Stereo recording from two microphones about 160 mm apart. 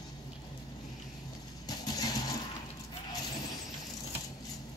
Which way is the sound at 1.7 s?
25° left (ahead or behind).